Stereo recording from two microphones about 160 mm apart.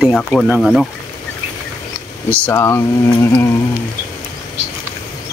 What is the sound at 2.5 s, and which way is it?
Speech, 15° left (ahead or behind).